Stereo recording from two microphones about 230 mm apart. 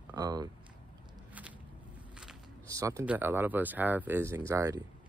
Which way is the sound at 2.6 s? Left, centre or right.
Centre.